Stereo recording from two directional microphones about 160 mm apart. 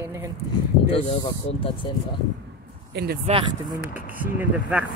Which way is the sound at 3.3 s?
45° right (ahead or behind).